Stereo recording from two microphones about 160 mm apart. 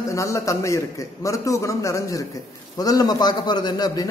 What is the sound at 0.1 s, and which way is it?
A man's voice, 20° left (ahead or behind).